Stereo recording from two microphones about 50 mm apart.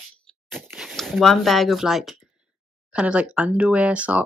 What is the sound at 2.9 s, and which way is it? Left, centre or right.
Speech, right.